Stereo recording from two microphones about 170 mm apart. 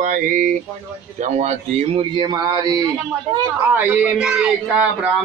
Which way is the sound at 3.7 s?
10° right (ahead or behind).